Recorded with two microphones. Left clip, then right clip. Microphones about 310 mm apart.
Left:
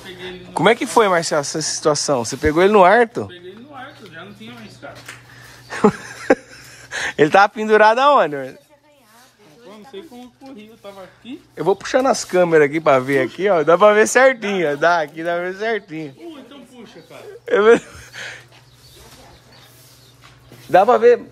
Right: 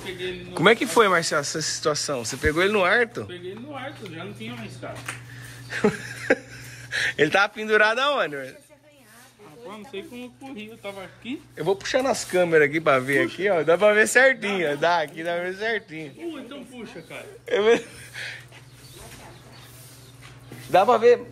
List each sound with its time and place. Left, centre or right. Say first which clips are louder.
0.2 s speech: left 4 dB; centre
5.7 s a sound: left 7 dB; left
6.8 s speech: left 5 dB; left
10.5 s speech: right 2 dB; centre
11.5 s speech: left 6 dB; left
17.5 s speech: left 7 dB; left
20.7 s a man's voice: left 5 dB; left